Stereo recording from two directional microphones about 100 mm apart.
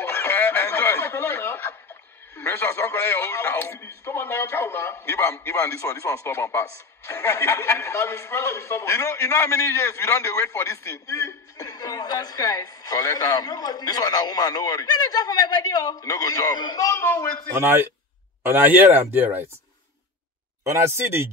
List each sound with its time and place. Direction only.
0.1 s snicker: 20° left (ahead or behind)
2.3 s a man's voice: 20° left (ahead or behind); by 16.8 s 45° left (ahead or behind)
16.8 s a man's voice: 25° left (ahead or behind)
17.6 s speech: 25° right (ahead or behind)
20.6 s speech: 25° right (ahead or behind)